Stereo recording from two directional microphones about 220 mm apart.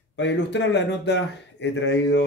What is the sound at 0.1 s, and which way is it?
Speech, 55° left (ahead or behind).